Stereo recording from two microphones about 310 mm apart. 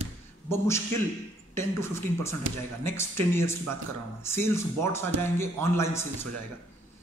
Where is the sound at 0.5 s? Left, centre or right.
Centre.